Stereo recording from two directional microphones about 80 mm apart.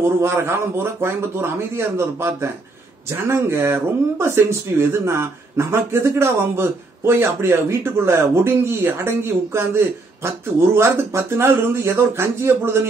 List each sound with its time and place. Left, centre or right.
0.2 s speech: right